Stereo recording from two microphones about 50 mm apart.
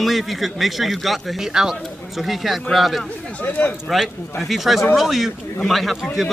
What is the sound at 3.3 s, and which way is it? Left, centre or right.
Speech, left.